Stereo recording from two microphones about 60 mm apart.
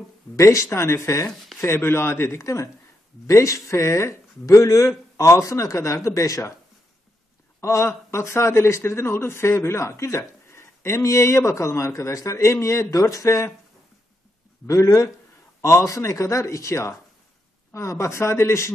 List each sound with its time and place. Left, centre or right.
0.4 s speech: left
1.3 s a sound: centre
1.6 s speech: left
7.6 s speech: left
14.7 s speech: left